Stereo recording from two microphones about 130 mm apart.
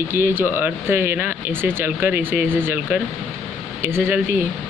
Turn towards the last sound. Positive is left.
turn(degrees=-15)  # may be behind; listen again after turning